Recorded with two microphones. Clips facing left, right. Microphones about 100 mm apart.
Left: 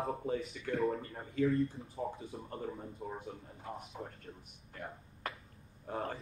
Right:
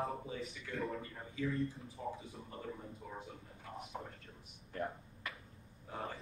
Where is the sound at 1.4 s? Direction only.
30° left (ahead or behind).